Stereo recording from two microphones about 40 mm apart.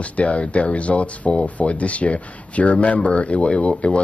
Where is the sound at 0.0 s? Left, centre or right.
Left.